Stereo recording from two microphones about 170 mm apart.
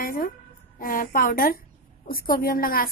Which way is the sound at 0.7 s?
55° left (ahead or behind).